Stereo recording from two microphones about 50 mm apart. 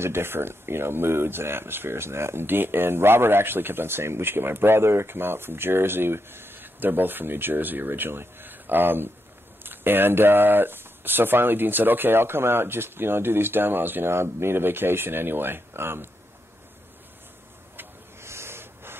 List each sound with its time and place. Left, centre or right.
0.0 s speech: right
18.2 s waves: right